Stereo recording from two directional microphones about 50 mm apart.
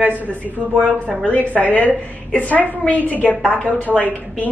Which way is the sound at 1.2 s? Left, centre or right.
Left.